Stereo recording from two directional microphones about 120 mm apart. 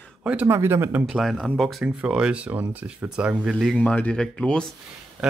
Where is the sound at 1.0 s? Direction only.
Centre (ahead or behind).